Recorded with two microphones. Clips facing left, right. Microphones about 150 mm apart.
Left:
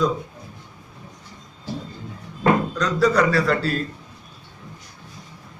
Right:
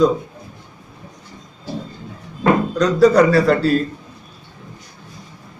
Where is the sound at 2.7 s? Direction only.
35° right (ahead or behind).